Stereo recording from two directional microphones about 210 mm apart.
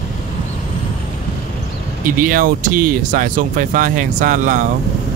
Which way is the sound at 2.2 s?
40° right (ahead or behind).